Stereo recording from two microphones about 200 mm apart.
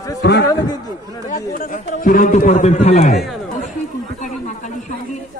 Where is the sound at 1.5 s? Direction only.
40° left (ahead or behind).